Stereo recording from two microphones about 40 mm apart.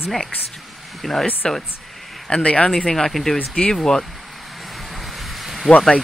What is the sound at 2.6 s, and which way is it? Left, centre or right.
Speech, centre.